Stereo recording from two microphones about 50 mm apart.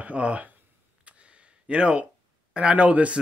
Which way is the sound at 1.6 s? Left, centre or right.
Right.